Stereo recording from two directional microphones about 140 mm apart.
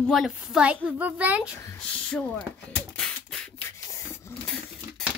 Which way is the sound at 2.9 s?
5° left (ahead or behind).